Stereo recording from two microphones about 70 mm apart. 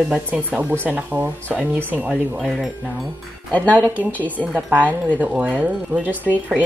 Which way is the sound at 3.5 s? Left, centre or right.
Left.